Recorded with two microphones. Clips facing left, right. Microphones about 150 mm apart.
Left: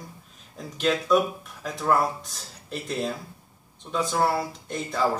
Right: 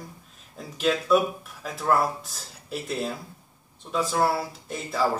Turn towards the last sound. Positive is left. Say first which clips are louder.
# even
turn(degrees=-5)  # may be behind; listen again after turning